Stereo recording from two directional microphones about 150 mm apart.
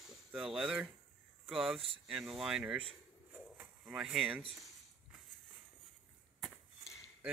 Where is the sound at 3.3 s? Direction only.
10° right (ahead or behind).